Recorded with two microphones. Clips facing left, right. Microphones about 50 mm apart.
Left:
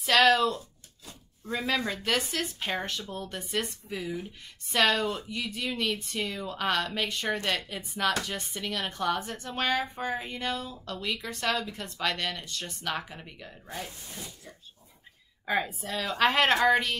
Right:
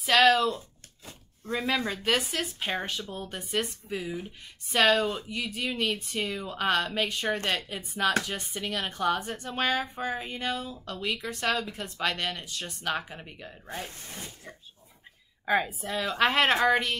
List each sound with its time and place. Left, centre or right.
0.0 s speech: centre
13.7 s speech: right
15.4 s speech: centre